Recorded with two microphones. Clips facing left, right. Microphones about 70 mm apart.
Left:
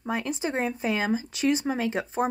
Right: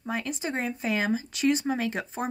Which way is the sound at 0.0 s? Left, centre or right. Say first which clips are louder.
Left 3 dB; centre.